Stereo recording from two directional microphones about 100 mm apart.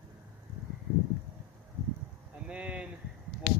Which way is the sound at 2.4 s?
10° right (ahead or behind).